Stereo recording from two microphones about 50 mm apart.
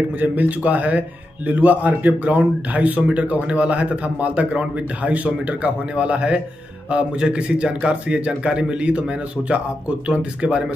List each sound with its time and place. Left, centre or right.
0.2 s a man's voice: right